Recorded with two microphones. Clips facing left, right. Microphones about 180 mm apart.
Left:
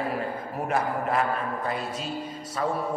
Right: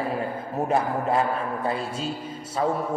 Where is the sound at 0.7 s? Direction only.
30° right (ahead or behind).